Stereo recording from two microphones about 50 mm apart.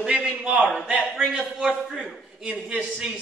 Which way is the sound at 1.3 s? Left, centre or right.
Right.